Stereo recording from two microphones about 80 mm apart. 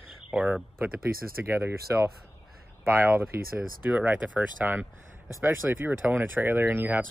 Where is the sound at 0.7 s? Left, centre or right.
Right.